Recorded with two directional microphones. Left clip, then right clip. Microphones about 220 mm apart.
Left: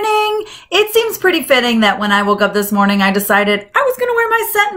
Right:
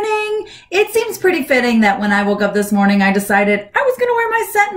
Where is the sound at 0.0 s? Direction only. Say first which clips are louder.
Left 3 dB; 75° left (ahead or behind).